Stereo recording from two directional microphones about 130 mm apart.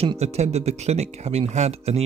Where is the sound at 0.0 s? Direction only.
55° right (ahead or behind).